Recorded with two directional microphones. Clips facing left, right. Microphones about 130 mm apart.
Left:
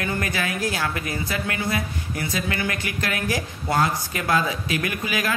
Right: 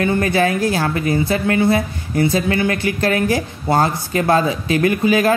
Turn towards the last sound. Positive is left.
turn(degrees=-30)  # may be behind; listen again after turning